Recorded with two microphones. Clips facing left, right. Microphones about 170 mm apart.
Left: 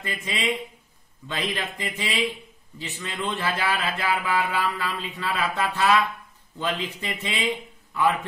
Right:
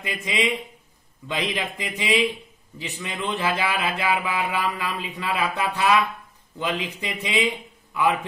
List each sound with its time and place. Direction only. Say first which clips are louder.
0.0 s a man's voice: right 3 dB; 15° right (ahead or behind)